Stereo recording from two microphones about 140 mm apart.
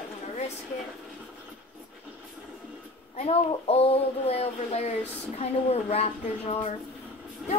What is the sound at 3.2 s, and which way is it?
Speech, 45° left (ahead or behind).